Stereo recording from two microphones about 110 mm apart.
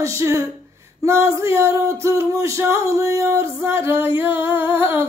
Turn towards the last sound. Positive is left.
turn(degrees=-20)  # may be behind; listen again after turning